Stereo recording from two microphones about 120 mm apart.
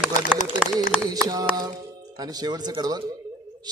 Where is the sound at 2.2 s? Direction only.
35° right (ahead or behind).